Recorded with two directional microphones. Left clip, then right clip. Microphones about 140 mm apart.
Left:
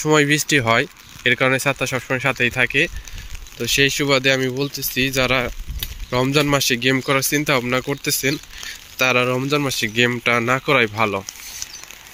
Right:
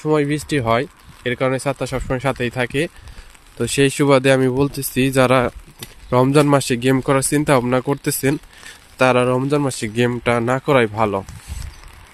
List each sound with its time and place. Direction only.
0.0 s speech: 15° right (ahead or behind); by 2.9 s 35° right (ahead or behind)
3.5 s speech: 65° right (ahead or behind)
4.7 s speech: 90° right
6.0 s speech: 45° right (ahead or behind)
6.3 s speech: 60° right (ahead or behind)
8.9 s speech: 55° right (ahead or behind)
9.4 s speech: 40° right (ahead or behind)